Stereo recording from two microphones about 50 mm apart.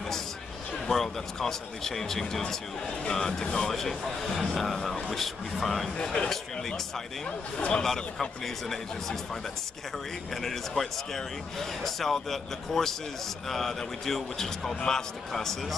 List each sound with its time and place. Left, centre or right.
0.8 s a man's voice: centre
7.2 s speech: left
7.8 s a man's voice: centre